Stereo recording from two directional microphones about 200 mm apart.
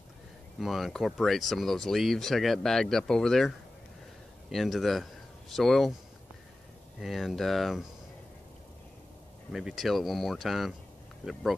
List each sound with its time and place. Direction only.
0.6 s speech: centre (ahead or behind)
7.0 s speech: centre (ahead or behind)
9.5 s speech: centre (ahead or behind)